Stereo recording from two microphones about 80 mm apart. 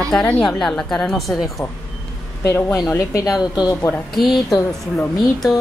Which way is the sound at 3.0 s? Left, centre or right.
Left.